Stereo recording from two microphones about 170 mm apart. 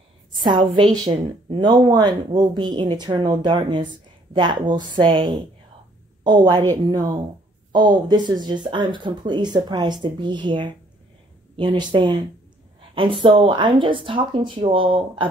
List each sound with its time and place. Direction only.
0.4 s speech: 25° right (ahead or behind)
7.7 s speech: 25° right (ahead or behind)